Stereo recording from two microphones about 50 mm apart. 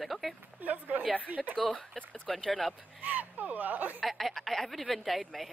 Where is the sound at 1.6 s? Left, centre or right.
Left.